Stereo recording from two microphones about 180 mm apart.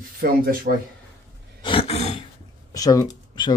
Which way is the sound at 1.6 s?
30° left (ahead or behind).